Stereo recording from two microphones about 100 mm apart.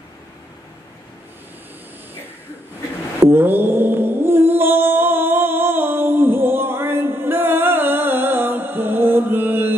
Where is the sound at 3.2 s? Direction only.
20° right (ahead or behind).